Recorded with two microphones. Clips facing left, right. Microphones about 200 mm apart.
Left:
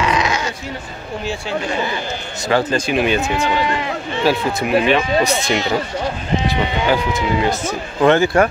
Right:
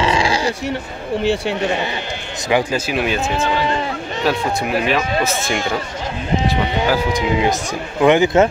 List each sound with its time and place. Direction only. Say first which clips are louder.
0.0 s dog: right 2 dB; 30° right (ahead or behind)
1.2 s speech: right 4 dB; 65° right (ahead or behind)
2.4 s speech: even; 15° right (ahead or behind)
2.9 s speech: left 2 dB; centre (ahead or behind)
7.1 s speech: right 1 dB; 15° right (ahead or behind)